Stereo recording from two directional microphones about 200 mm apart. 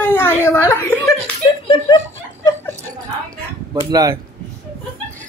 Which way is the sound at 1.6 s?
25° left (ahead or behind).